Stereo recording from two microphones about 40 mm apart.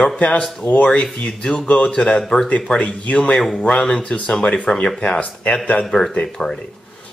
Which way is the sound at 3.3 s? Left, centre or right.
Centre.